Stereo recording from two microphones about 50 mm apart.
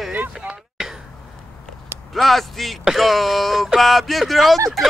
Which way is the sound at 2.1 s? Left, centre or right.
Centre.